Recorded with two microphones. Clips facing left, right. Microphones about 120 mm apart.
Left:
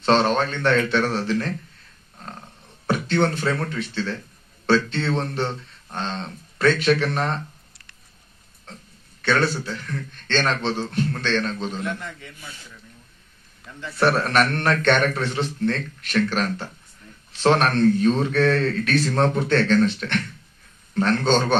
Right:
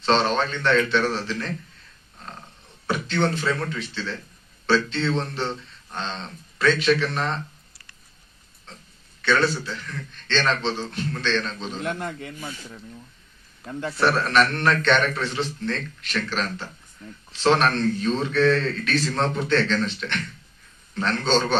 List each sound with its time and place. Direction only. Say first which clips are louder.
0.0 s a man's voice: left 2 dB; 45° left (ahead or behind)
2.9 s a man's voice: left 3 dB; 50° left (ahead or behind)
9.2 s a man's voice: even; 50° left (ahead or behind)
10.9 s a man's voice: left 2 dB; 50° left (ahead or behind)
11.8 s a man's voice: right 2 dB; 50° right (ahead or behind)
13.7 s a man's voice: right 7 dB; 50° right (ahead or behind)
13.9 s a man's voice: left 1 dB; 50° left (ahead or behind)